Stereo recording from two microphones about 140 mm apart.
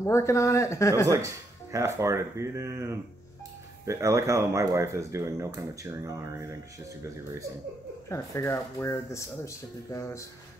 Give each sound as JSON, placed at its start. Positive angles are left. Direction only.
{"t": 0.0, "sound": "speech", "side_deg": 20}
{"t": 1.0, "sound": "speech", "side_deg": -25}
{"t": 8.1, "sound": "speech", "side_deg": 20}